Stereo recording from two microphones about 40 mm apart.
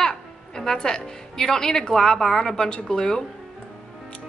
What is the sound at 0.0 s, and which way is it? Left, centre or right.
Music, centre.